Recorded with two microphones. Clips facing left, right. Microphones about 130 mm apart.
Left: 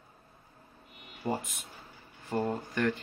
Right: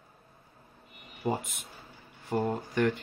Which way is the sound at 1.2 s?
20° right (ahead or behind).